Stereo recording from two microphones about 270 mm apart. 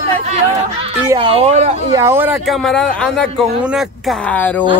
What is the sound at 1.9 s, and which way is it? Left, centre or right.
Speech, centre.